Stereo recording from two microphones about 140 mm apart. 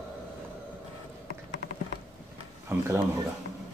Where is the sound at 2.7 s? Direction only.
15° right (ahead or behind).